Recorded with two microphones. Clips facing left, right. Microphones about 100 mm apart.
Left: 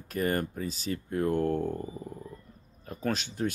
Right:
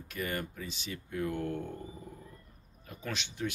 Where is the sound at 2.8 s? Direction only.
40° left (ahead or behind).